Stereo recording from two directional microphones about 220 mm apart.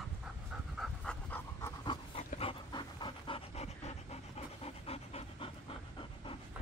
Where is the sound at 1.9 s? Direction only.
25° left (ahead or behind).